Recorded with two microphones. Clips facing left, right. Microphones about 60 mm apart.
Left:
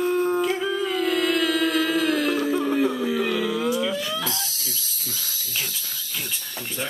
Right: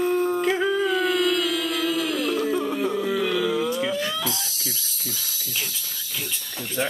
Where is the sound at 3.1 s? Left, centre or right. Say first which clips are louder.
Even; left.